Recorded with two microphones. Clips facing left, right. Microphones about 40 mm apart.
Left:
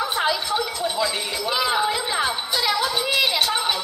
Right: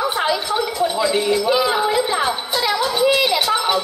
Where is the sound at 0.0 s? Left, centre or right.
Centre.